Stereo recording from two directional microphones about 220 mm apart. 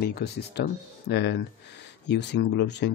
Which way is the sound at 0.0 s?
45° left (ahead or behind).